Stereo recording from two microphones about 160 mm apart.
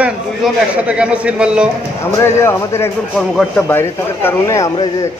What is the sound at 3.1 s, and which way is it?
Speech, centre (ahead or behind).